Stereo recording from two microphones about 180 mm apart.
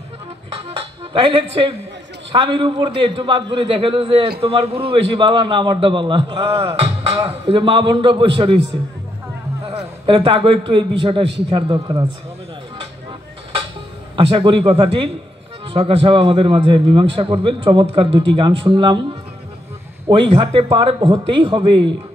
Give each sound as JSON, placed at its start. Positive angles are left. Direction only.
{"t": 0.6, "sound": "a man's voice", "side_deg": -30}
{"t": 9.7, "sound": "a man's voice", "side_deg": -30}
{"t": 14.1, "sound": "a man's voice", "side_deg": -30}
{"t": 20.1, "sound": "a man's voice", "side_deg": -30}